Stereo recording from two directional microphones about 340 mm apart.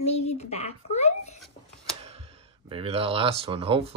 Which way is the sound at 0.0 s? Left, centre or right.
Centre.